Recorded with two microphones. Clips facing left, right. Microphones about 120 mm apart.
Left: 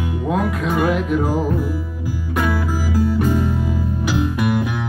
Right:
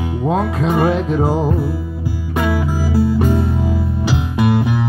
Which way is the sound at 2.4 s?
15° right (ahead or behind).